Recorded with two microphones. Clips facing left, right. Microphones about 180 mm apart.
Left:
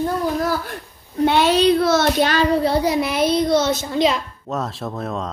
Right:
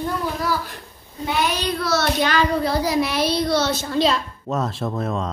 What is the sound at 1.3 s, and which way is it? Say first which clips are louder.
Child singing: left 6 dB; 75° left (ahead or behind).